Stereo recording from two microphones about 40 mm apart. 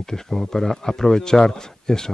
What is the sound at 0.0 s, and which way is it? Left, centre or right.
Speech, centre.